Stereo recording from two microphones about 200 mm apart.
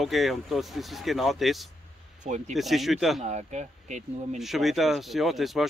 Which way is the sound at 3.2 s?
35° right (ahead or behind).